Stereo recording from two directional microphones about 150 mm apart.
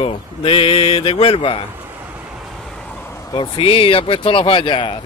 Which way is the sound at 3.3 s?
35° left (ahead or behind).